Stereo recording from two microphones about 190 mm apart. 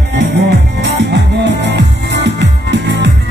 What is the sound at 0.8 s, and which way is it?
Music, 65° right (ahead or behind).